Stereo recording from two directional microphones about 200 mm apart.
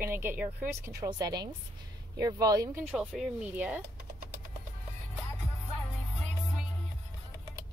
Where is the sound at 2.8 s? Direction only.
5° right (ahead or behind).